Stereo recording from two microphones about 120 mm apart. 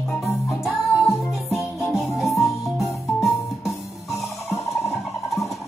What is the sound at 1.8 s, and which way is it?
Music, 20° left (ahead or behind).